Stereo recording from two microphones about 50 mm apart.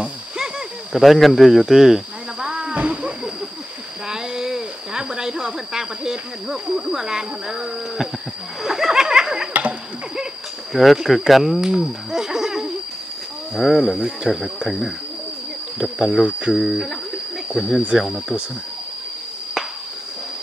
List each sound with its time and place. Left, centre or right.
0.9 s speech: centre
2.4 s wild animals: centre
2.7 s wild animals: right
4.1 s speech: centre
8.6 s a sound: centre
10.7 s speech: centre
15.8 s speech: centre